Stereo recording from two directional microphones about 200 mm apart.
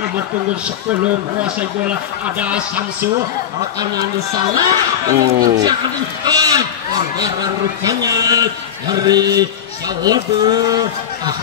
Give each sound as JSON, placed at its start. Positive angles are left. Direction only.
{"t": 2.3, "sound": "speech", "side_deg": -5}
{"t": 3.9, "sound": "speech", "side_deg": -20}
{"t": 7.8, "sound": "speech", "side_deg": -20}